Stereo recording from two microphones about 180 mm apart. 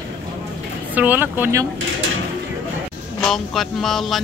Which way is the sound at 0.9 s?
10° right (ahead or behind).